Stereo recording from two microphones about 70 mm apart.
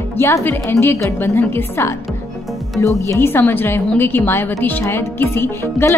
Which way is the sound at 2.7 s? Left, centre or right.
Left.